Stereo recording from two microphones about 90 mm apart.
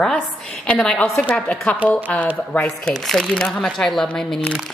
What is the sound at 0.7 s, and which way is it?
Speech, 10° left (ahead or behind).